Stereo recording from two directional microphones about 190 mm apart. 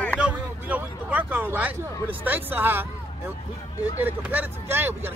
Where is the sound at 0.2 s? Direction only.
5° right (ahead or behind).